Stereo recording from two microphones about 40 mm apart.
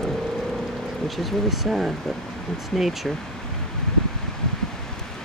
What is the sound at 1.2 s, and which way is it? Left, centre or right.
Speech, centre.